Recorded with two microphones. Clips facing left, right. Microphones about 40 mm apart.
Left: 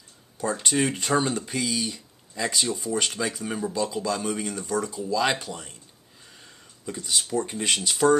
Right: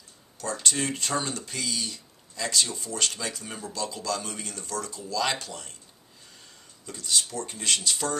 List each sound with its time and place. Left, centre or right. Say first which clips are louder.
0.4 s speech: left 5 dB; centre
6.9 s speech: left 3 dB; centre